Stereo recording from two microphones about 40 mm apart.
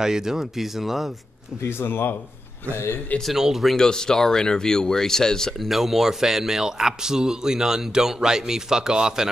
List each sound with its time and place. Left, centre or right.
0.0 s speech: centre
1.6 s speech: left
3.3 s speech: centre
3.7 s speech: centre
5.6 s speech: centre